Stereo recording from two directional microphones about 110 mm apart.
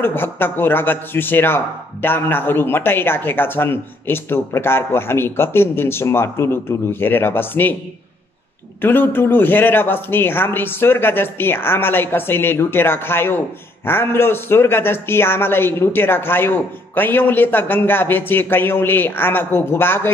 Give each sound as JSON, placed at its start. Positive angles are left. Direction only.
{"t": 0.0, "sound": "speech", "side_deg": 20}
{"t": 8.8, "sound": "speech", "side_deg": 20}